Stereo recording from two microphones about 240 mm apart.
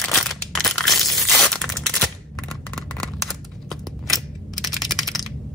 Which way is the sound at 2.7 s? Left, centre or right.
Centre.